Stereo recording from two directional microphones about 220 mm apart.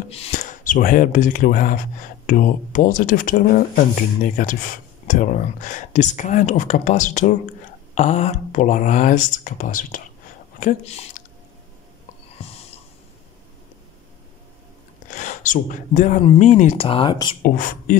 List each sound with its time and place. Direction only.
0.1 s speech: 30° left (ahead or behind)
12.4 s a sound: 25° left (ahead or behind)
15.0 s speech: 35° left (ahead or behind)
17.4 s speech: 40° left (ahead or behind)